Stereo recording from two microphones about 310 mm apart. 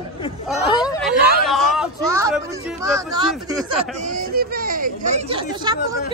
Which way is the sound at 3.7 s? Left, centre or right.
Right.